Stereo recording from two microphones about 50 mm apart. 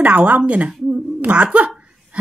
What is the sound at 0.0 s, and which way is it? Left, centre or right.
A woman's voice, right.